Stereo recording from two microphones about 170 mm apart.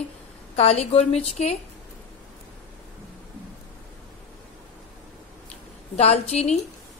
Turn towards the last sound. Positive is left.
turn(degrees=40)  # may be behind; listen again after turning